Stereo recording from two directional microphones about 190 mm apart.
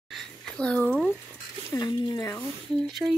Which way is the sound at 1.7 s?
20° left (ahead or behind).